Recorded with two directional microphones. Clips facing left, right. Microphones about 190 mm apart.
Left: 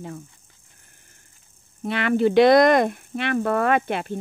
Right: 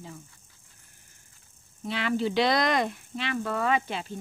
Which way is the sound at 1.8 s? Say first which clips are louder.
Left 7 dB; 60° left (ahead or behind).